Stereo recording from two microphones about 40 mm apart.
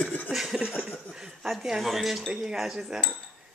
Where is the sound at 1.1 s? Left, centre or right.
Centre.